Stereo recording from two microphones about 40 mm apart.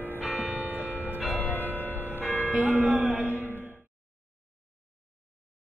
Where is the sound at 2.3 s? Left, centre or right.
Right.